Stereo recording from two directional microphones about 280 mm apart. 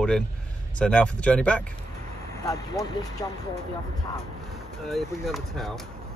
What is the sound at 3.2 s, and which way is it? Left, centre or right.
Speech, centre.